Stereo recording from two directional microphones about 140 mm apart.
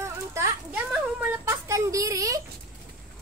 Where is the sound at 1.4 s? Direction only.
20° right (ahead or behind).